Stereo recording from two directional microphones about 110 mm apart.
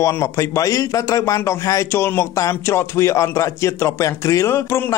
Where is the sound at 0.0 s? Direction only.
30° left (ahead or behind).